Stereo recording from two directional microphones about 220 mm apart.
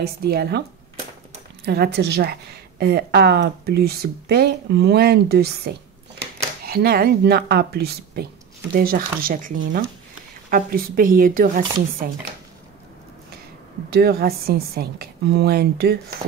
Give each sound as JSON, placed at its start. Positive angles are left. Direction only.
{"t": 0.0, "sound": "a woman's voice", "side_deg": -45}
{"t": 13.9, "sound": "a woman's voice", "side_deg": -45}